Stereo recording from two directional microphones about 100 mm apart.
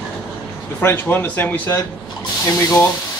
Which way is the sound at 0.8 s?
25° left (ahead or behind).